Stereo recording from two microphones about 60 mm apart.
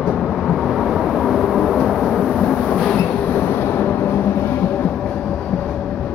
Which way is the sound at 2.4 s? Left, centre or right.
Centre.